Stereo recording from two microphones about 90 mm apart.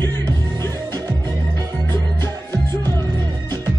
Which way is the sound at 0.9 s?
50° right (ahead or behind).